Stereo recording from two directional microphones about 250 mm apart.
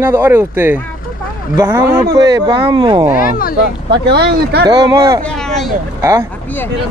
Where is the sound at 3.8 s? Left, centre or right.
Right.